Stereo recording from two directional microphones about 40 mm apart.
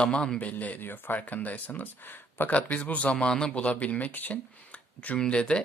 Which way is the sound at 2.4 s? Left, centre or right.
Left.